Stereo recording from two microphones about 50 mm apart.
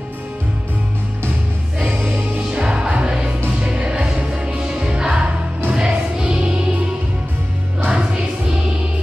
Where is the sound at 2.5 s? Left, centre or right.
Centre.